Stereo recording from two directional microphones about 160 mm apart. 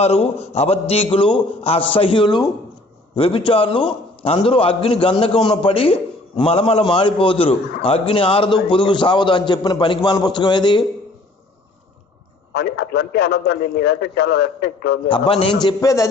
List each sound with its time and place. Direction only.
0.0 s a man's voice: 40° left (ahead or behind)
12.5 s a man's voice: 85° left
15.0 s a man's voice: 35° left (ahead or behind)
15.6 s a man's voice: 20° left (ahead or behind)